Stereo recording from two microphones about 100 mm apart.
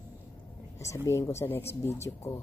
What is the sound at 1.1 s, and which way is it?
Speech, 30° left (ahead or behind).